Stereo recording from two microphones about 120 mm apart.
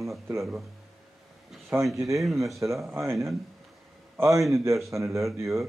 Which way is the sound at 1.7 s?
20° right (ahead or behind).